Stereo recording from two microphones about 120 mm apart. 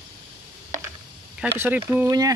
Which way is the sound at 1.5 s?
20° right (ahead or behind).